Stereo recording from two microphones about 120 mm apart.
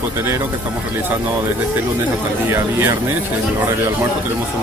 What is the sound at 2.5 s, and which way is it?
Speech, 20° right (ahead or behind).